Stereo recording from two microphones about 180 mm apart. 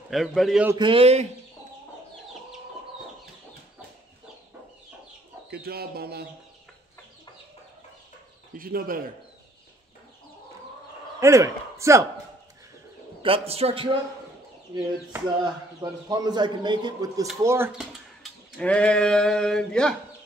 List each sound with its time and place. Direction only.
0.1 s speech: centre (ahead or behind)
0.7 s speech: 30° right (ahead or behind)
5.5 s speech: 60° right (ahead or behind)
8.5 s speech: 50° right (ahead or behind)
11.1 s a man's voice: 15° right (ahead or behind)
13.2 s speech: 30° right (ahead or behind)
15.8 s a man's voice: 20° right (ahead or behind)
18.6 s speech: 5° left (ahead or behind)